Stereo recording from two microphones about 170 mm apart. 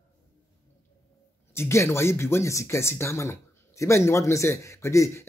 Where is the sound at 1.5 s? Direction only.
15° left (ahead or behind).